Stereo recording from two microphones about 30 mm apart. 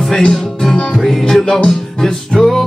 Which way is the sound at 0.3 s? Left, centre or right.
Centre.